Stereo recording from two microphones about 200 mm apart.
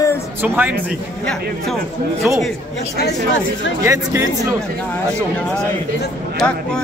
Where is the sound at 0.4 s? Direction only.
10° right (ahead or behind).